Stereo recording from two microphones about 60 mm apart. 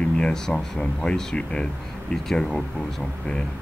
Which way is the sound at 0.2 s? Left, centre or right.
Centre.